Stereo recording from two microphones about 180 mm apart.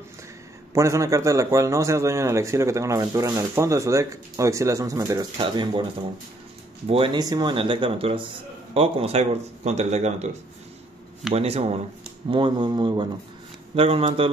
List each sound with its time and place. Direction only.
0.7 s a man's voice: 15° right (ahead or behind)
6.9 s speech: 30° right (ahead or behind)
11.3 s speech: 35° right (ahead or behind)